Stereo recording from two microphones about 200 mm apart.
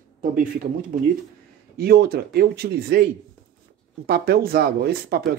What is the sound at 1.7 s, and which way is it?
Speech, 50° right (ahead or behind).